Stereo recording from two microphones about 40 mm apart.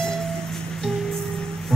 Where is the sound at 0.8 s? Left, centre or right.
Centre.